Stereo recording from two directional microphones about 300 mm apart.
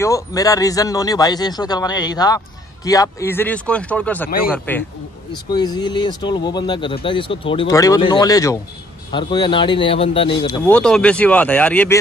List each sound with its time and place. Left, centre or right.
0.0 s a man's voice: centre
10.7 s speech: centre